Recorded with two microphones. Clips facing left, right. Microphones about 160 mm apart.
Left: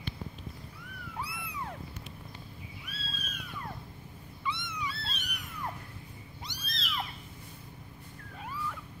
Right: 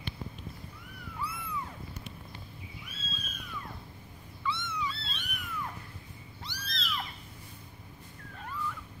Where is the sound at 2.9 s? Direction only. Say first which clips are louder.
Left 2 dB; 20° right (ahead or behind).